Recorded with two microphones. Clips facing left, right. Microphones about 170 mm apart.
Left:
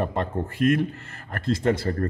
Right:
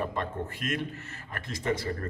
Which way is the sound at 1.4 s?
65° left (ahead or behind).